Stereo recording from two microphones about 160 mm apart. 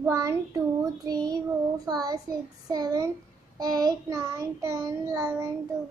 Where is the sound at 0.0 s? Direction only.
20° right (ahead or behind).